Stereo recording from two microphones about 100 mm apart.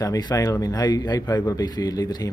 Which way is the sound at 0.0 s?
40° left (ahead or behind).